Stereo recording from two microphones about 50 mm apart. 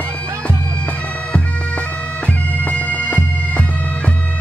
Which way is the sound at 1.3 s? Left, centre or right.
Left.